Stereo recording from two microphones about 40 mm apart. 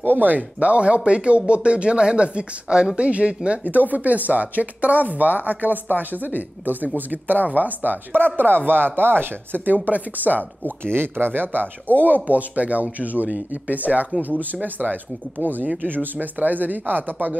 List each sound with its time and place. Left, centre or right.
0.0 s speech: right
0.4 s speech: right
3.6 s speech: right
9.8 s speech: right
10.8 s speech: right